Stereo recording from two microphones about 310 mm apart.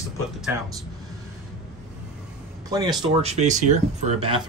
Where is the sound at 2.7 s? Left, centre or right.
Centre.